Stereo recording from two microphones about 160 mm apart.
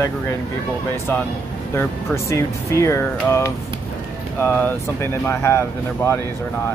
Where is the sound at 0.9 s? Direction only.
15° left (ahead or behind).